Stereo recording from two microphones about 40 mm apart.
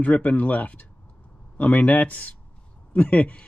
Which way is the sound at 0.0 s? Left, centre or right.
Left.